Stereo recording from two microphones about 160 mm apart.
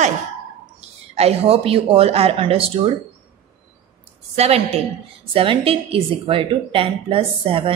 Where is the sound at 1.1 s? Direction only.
40° right (ahead or behind).